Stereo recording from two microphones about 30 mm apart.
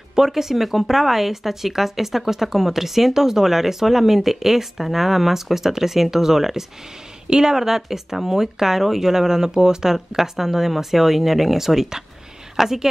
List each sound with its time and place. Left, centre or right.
0.1 s a woman's voice: centre